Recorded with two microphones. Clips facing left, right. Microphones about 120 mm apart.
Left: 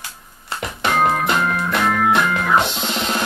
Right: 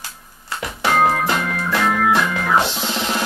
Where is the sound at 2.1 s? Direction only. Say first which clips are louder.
Left 1 dB; 20° left (ahead or behind).